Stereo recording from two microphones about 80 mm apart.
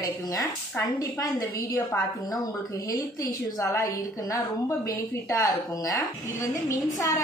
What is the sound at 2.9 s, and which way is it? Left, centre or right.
A woman's voice, left.